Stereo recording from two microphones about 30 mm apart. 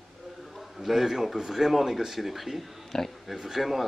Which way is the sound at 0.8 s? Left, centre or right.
Centre.